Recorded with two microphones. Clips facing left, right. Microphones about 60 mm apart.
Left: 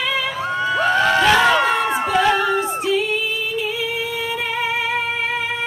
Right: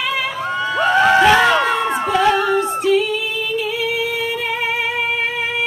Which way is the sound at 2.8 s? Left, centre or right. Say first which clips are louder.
Right 4 dB; right.